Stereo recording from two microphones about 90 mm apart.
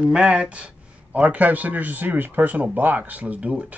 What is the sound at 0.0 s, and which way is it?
A man's voice, 10° right (ahead or behind).